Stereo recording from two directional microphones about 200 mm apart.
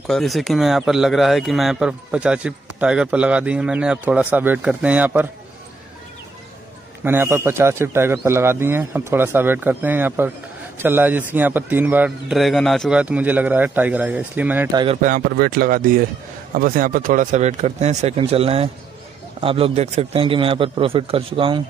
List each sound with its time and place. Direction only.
0.1 s speech: centre (ahead or behind)
7.1 s a man's voice: 10° right (ahead or behind)
15.0 s a man's voice: 40° right (ahead or behind); by 21.6 s 25° right (ahead or behind)